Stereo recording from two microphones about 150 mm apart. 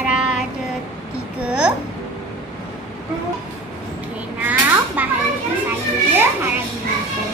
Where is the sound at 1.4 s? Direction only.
10° right (ahead or behind).